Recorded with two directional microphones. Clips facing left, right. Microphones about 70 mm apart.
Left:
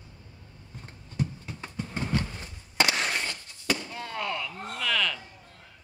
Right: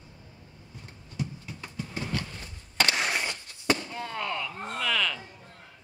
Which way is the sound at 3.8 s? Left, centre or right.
Centre.